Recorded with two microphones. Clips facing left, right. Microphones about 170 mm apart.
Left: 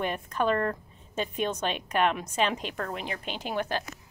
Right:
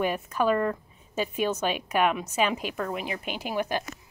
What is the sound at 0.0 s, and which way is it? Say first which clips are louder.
A woman's voice: right 3 dB; 5° right (ahead or behind).